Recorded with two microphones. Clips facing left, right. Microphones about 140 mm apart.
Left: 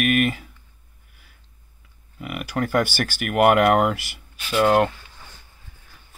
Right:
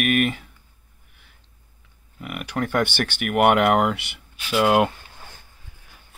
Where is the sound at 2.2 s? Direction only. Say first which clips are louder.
Left 1 dB; centre (ahead or behind).